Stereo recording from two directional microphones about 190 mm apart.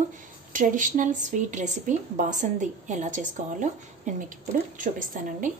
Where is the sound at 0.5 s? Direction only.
45° right (ahead or behind).